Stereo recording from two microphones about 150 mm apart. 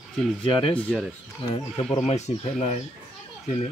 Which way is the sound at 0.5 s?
35° left (ahead or behind).